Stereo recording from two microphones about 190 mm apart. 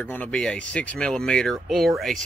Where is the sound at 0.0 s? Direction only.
10° left (ahead or behind).